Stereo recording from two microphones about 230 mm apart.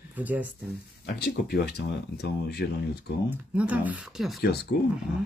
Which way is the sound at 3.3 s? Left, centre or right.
Centre.